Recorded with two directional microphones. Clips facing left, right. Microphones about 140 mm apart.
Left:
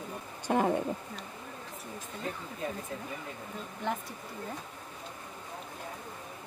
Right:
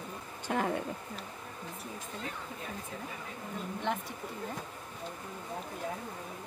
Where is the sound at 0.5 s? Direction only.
20° left (ahead or behind).